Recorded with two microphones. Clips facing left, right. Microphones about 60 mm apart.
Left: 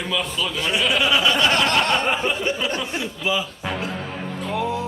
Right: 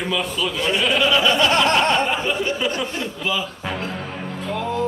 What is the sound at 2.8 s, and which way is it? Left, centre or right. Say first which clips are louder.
Speech: even; centre.